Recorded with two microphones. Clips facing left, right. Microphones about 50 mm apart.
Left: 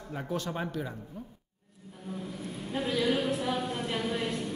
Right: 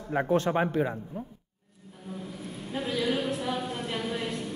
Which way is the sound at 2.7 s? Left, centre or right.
Centre.